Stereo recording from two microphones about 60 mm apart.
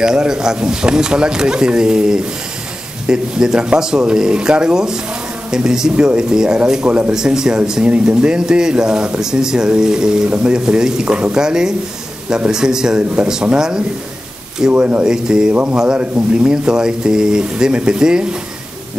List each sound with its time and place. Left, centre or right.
0.0 s speech: centre
14.7 s speech: right
15.0 s speech: centre
15.5 s speech: right
15.8 s speech: centre